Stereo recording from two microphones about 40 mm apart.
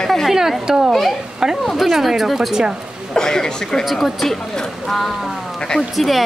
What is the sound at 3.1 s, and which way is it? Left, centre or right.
Speech, centre.